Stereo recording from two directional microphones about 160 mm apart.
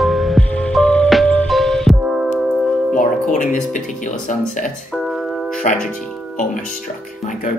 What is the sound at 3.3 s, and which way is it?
Music, 50° left (ahead or behind).